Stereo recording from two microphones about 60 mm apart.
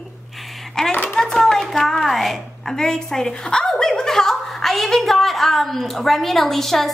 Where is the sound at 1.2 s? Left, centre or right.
Centre.